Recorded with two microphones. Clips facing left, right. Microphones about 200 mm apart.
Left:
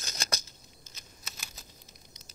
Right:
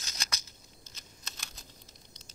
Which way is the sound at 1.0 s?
5° left (ahead or behind).